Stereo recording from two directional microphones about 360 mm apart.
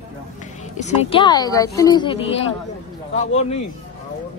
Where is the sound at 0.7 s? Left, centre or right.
Centre.